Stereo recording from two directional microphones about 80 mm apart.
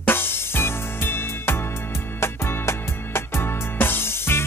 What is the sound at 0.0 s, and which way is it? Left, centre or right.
Music, left.